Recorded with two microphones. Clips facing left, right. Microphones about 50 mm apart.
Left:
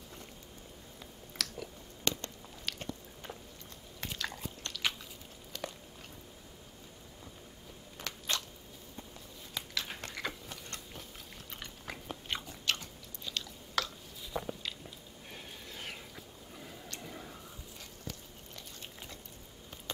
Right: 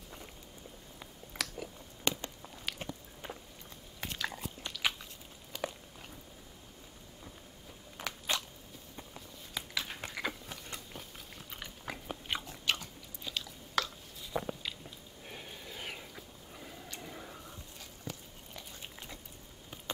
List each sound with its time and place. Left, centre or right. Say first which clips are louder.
0.9 s biting: right 1 dB; centre
5.5 s walk: right 3 dB; centre
8.0 s biting: right 2 dB; centre
9.5 s biting: right 1 dB; centre
15.2 s a sound: right 2 dB; centre
18.1 s biting: right 2 dB; centre